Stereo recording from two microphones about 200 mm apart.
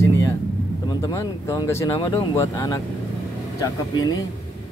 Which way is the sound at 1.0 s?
20° left (ahead or behind).